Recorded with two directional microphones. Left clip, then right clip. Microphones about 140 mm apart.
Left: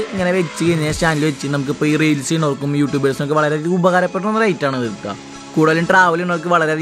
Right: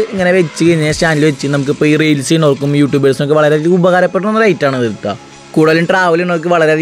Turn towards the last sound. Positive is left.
turn(degrees=-30)  # may be behind; listen again after turning